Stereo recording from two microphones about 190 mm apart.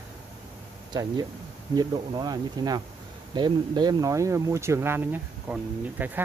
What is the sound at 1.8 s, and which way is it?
Speech, 20° right (ahead or behind).